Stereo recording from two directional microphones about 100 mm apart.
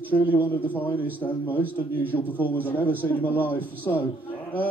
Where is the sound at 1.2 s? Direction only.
15° left (ahead or behind).